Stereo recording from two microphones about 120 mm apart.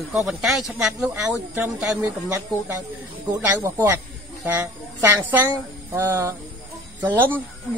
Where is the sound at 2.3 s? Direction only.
25° right (ahead or behind).